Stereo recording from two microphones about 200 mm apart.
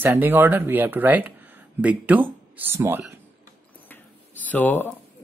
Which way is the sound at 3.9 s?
10° left (ahead or behind).